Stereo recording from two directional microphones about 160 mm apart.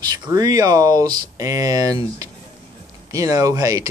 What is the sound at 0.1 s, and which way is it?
Speech, 25° right (ahead or behind).